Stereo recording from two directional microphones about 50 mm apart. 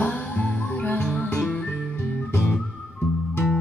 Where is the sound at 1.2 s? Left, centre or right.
Left.